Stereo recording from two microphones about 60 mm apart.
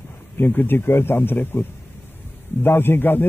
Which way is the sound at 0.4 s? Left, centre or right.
Left.